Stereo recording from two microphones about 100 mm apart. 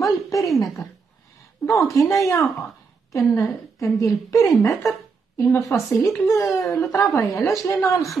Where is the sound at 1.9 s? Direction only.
30° left (ahead or behind).